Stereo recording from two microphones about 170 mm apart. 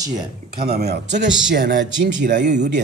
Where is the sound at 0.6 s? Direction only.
70° right (ahead or behind).